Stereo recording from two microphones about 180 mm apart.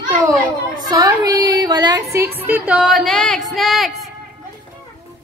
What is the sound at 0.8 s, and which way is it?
A woman's voice, 20° right (ahead or behind).